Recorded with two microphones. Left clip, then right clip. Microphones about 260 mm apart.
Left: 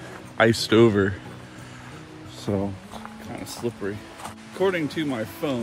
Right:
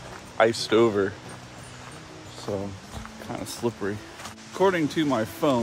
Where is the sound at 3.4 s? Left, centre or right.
Centre.